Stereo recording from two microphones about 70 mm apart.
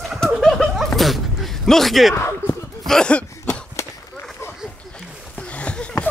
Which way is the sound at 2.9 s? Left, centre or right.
Centre.